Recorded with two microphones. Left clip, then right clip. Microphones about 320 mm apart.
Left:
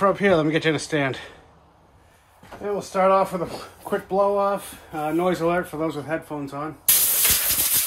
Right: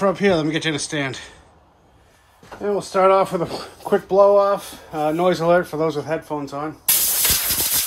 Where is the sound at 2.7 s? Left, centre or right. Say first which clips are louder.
Right 4 dB; right.